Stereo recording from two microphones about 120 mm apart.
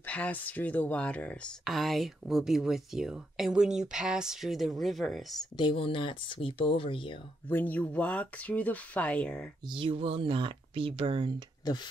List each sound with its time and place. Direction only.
0.0 s speech: 15° left (ahead or behind)
5.6 s speech: 45° left (ahead or behind)
7.4 s speech: 15° left (ahead or behind)
9.7 s speech: 50° right (ahead or behind)
11.6 s speech: 35° left (ahead or behind)